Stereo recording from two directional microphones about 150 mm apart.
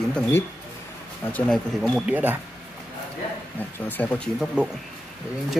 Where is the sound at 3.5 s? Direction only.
10° left (ahead or behind).